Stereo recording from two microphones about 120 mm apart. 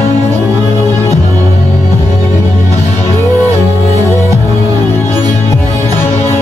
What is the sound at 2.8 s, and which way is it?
Music, 60° left (ahead or behind).